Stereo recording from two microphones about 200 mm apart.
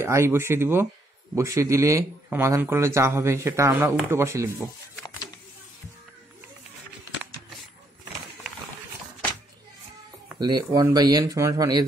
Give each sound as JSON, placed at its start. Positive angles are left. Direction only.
{"t": 0.0, "sound": "speech", "side_deg": -15}
{"t": 10.4, "sound": "speech", "side_deg": -20}